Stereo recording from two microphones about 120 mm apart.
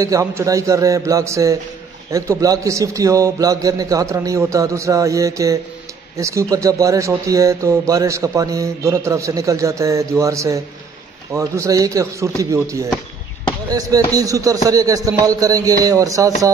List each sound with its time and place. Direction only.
0.0 s speech: 25° right (ahead or behind)
13.7 s speech: 30° right (ahead or behind)